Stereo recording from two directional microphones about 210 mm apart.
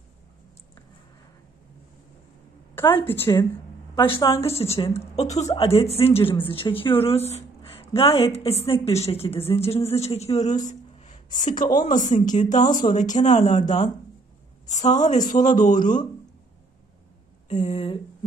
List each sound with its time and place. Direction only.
2.7 s a woman's voice: 10° left (ahead or behind)
3.9 s speech: 20° left (ahead or behind)
15.8 s speech: 20° left (ahead or behind)
17.5 s speech: 35° left (ahead or behind)